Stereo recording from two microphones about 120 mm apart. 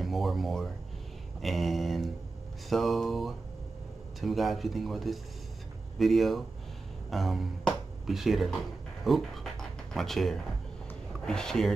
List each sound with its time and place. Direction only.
0.0 s speech: centre (ahead or behind)